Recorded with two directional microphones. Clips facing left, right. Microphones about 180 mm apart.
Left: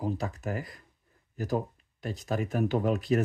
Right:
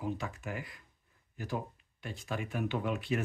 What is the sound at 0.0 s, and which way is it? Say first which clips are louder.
Speech: left 5 dB; 35° left (ahead or behind).